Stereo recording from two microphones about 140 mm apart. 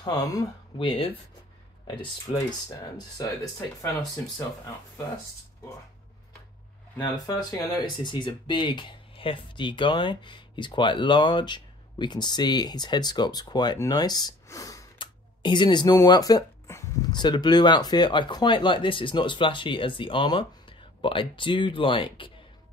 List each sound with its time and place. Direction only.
0.0 s speech: 25° left (ahead or behind)
0.7 s speech: 40° left (ahead or behind)
2.3 s speech: 25° left (ahead or behind)
7.0 s speech: 30° left (ahead or behind)
15.0 s a sound: 35° left (ahead or behind)
17.1 s speech: 30° left (ahead or behind)